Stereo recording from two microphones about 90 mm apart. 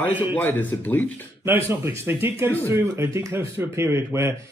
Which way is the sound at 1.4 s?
25° right (ahead or behind).